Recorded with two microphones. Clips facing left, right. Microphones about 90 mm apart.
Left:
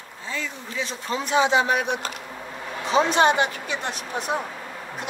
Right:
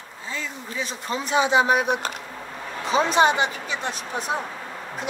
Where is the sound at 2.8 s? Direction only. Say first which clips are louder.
Left 1 dB; 25° left (ahead or behind).